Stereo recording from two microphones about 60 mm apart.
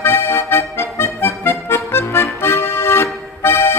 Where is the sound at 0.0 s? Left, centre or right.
Left.